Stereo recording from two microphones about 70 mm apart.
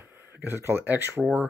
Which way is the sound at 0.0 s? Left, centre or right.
Right.